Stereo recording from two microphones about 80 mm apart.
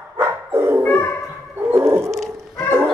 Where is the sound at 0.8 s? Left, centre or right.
Left.